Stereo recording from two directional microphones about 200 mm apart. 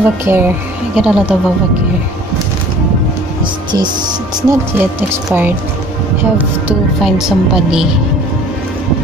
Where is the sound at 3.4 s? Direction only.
20° right (ahead or behind).